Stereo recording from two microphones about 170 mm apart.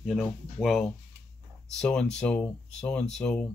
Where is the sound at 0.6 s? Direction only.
Centre (ahead or behind).